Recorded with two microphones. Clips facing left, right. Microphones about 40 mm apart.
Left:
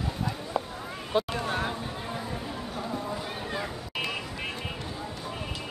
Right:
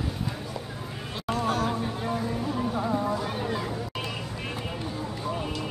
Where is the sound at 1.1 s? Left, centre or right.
Left.